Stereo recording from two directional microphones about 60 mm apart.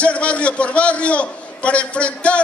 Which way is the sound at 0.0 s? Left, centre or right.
Left.